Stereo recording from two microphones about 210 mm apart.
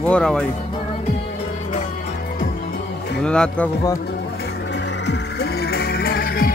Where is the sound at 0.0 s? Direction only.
5° left (ahead or behind).